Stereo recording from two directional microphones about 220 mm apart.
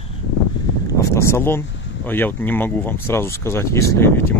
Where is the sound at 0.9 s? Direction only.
10° left (ahead or behind).